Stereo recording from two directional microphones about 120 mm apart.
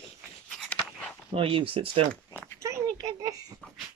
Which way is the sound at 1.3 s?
45° right (ahead or behind).